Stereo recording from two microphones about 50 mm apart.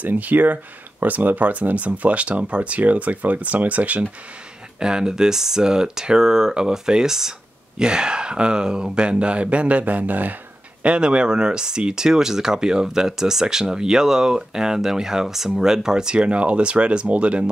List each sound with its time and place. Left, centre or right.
0.0 s speech: right
4.7 s speech: centre; by 10.3 s right
10.8 s speech: centre